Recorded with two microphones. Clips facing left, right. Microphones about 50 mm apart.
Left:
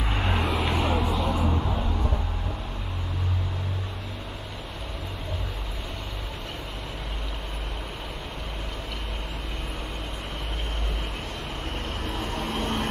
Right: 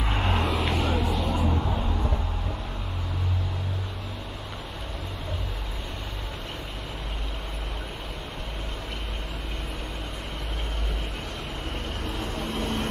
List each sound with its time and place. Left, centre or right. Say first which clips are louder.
0.0 s vehicle: right 1 dB; centre
12.4 s vehicle: left 1 dB; left